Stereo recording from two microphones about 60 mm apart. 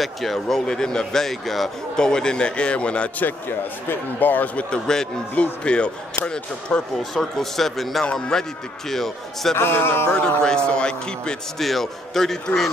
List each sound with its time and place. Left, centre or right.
0.0 s speech: centre
3.3 s speech: left
4.6 s speech: centre
5.3 s speech: left
7.0 s a man's voice: centre
9.6 s speech: left
10.1 s speech: centre
11.6 s a man's voice: centre